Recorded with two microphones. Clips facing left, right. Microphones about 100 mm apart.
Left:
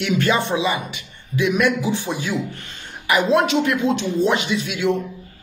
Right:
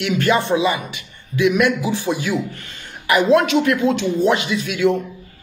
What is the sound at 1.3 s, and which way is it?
Speech, 35° left (ahead or behind).